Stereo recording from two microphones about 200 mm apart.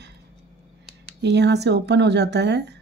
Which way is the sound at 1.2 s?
60° right (ahead or behind).